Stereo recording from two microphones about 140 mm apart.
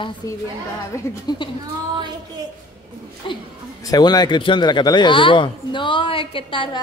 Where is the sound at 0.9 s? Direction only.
30° left (ahead or behind).